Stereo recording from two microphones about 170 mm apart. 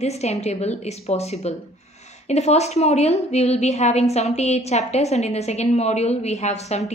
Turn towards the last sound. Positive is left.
turn(degrees=40)  # may be behind; listen again after turning